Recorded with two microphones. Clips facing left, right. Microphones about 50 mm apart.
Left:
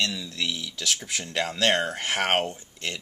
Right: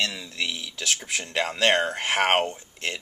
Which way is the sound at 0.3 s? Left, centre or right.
Centre.